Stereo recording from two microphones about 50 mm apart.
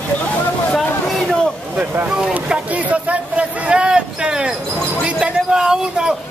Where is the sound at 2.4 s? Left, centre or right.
Right.